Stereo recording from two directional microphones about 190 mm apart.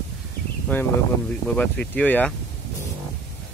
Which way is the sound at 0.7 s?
10° left (ahead or behind).